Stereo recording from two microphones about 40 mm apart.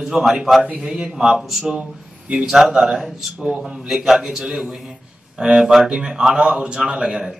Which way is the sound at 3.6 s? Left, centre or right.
Centre.